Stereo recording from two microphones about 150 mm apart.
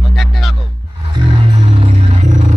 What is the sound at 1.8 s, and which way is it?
Music, 50° right (ahead or behind).